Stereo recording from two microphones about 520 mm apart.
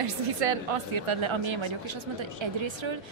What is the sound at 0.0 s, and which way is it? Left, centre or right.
A woman's voice, right.